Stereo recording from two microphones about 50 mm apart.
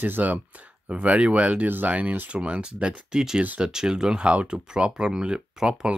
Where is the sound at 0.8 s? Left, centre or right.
Right.